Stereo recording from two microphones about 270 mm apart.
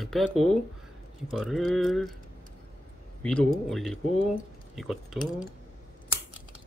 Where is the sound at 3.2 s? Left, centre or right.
Centre.